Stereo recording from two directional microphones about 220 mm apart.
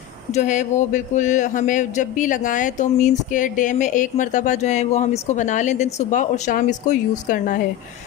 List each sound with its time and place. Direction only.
0.3 s a man's voice: 35° left (ahead or behind)